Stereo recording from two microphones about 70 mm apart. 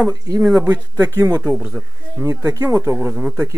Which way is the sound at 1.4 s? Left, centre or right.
Centre.